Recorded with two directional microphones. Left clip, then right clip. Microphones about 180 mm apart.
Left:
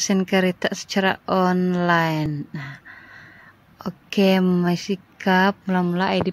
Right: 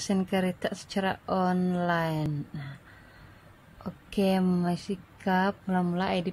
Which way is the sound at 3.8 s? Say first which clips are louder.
Left 9 dB; 20° left (ahead or behind).